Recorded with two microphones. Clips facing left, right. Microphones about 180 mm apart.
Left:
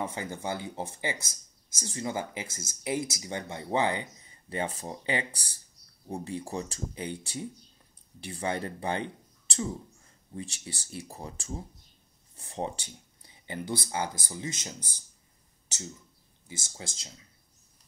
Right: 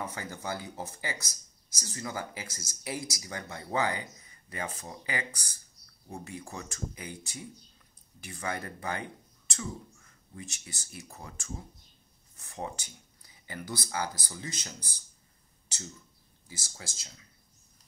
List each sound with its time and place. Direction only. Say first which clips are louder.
0.0 s speech: left 4 dB; 25° left (ahead or behind)
16.4 s speech: left 4 dB; 25° left (ahead or behind)